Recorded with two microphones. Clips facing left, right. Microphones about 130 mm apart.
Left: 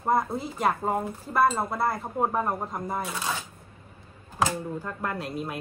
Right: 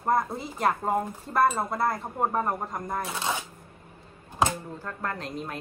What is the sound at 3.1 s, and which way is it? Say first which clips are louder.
Speech: right 1 dB; 25° right (ahead or behind).